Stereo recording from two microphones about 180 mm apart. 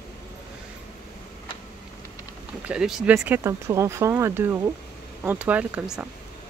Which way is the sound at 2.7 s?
5° right (ahead or behind).